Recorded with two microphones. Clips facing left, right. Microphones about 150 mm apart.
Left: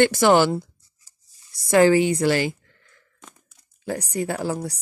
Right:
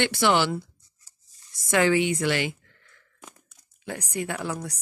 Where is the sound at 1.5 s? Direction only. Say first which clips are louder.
Left 6 dB; 35° left (ahead or behind).